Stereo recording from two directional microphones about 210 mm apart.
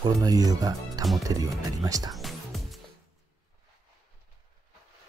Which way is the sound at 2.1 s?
Centre (ahead or behind).